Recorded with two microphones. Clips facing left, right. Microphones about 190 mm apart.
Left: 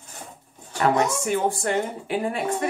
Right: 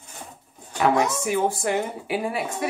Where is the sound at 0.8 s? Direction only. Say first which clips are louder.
Even; 5° right (ahead or behind).